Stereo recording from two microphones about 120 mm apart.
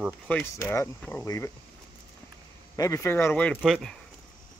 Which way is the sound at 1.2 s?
30° left (ahead or behind).